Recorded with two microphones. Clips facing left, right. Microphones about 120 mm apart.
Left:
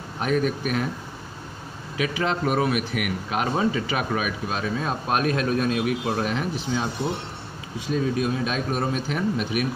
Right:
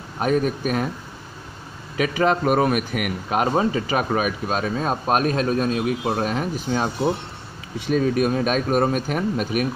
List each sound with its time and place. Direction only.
0.2 s a man's voice: 40° right (ahead or behind)
2.0 s a man's voice: 45° right (ahead or behind)
7.8 s speech: 60° right (ahead or behind); by 9.7 s 45° right (ahead or behind)